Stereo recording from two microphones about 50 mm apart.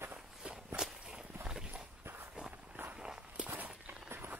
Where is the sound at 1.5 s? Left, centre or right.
Centre.